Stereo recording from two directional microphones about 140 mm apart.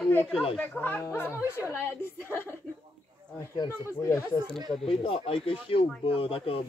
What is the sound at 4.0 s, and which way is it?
Speech, 20° left (ahead or behind).